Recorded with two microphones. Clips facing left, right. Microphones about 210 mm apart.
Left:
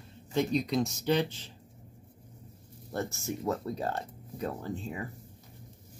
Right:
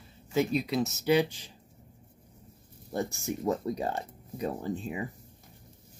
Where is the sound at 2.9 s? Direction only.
15° right (ahead or behind).